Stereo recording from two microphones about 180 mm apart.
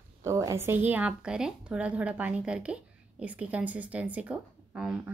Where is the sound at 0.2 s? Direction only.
15° right (ahead or behind).